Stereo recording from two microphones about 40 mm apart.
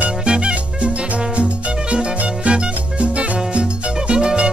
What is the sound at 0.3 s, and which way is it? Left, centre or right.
Music, right.